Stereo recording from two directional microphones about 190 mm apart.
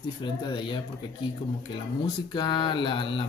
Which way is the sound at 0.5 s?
25° left (ahead or behind).